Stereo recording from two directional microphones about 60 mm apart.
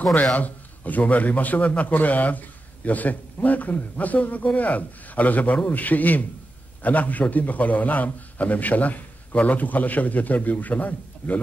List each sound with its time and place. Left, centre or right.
0.1 s a man's voice: left